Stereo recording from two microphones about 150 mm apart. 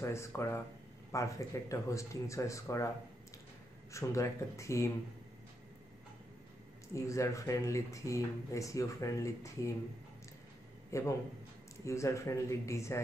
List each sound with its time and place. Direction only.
0.0 s speech: 20° left (ahead or behind)
3.9 s speech: 20° left (ahead or behind)
6.9 s speech: 20° left (ahead or behind)
10.9 s speech: 20° left (ahead or behind)